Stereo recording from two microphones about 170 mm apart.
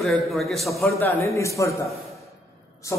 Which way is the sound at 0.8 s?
15° left (ahead or behind).